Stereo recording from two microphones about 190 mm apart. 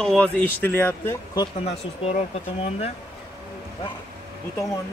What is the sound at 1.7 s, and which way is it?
Speech, 35° left (ahead or behind).